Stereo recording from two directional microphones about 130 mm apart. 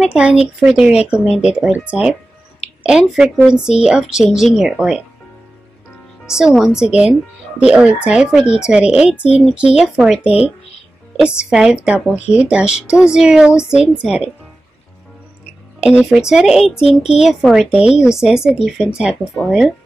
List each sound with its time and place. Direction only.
0.0 s a woman's voice: 5° right (ahead or behind)
6.2 s a woman's voice: 5° right (ahead or behind)
15.8 s a woman's voice: 5° right (ahead or behind)
16.8 s a child's voice: 55° left (ahead or behind)
17.2 s a woman's voice: centre (ahead or behind)